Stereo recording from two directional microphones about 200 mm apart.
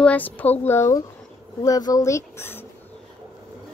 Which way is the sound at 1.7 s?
20° left (ahead or behind).